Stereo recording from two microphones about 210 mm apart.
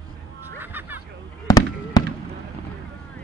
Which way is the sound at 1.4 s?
20° left (ahead or behind).